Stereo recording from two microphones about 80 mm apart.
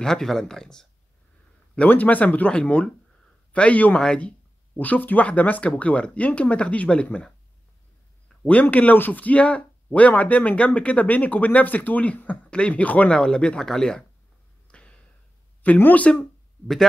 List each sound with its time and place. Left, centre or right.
0.0 s speech: centre
1.8 s speech: centre
8.5 s speech: centre
14.7 s a sound: centre
15.6 s speech: left